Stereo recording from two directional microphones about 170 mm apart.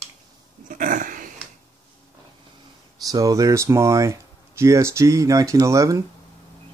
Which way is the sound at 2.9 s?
20° right (ahead or behind).